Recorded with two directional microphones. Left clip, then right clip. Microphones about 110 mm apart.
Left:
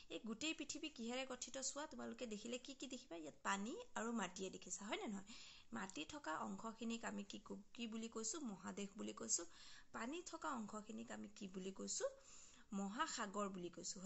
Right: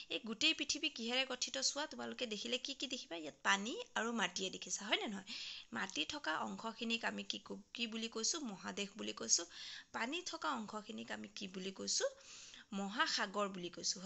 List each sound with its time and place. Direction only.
0.1 s speech: 20° right (ahead or behind)